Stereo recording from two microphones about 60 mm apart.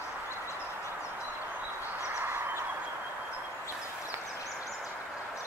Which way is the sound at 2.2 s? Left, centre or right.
Right.